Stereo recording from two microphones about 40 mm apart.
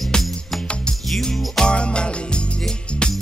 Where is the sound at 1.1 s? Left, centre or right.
Centre.